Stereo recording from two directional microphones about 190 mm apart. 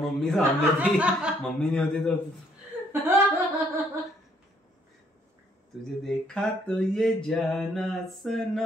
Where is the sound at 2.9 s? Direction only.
10° right (ahead or behind).